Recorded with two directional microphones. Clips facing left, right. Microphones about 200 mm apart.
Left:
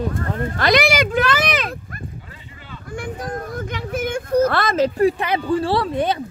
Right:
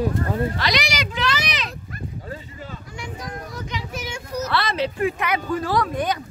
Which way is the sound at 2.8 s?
50° left (ahead or behind).